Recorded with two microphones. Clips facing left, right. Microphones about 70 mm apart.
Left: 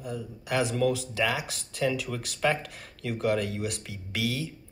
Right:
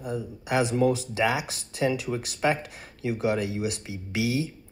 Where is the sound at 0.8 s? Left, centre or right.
Right.